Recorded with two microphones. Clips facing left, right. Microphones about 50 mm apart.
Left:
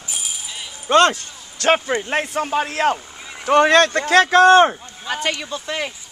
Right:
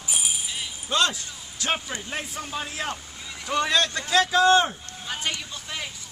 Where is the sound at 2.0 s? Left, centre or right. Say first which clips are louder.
Left 11 dB; left.